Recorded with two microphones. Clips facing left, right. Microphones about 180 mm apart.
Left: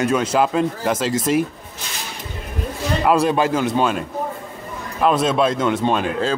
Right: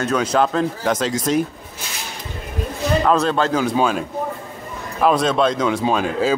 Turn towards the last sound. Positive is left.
turn(degrees=-5)  # may be behind; listen again after turning